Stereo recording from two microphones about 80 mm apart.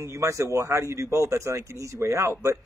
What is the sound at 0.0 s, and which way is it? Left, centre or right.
A man's voice, right.